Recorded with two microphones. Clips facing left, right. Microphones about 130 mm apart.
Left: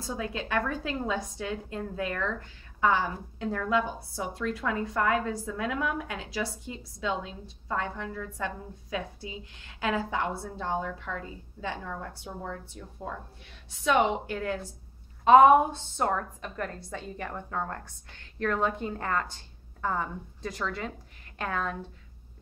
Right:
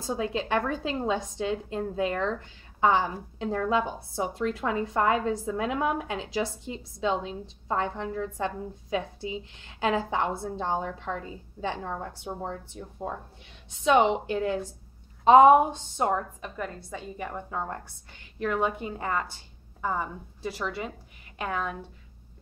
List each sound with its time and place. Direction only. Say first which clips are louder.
0.0 s a woman's voice: right 4 dB; 25° right (ahead or behind); by 21.7 s 10° right (ahead or behind)